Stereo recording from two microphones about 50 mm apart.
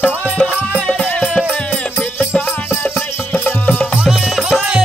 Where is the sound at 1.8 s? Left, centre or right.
Left.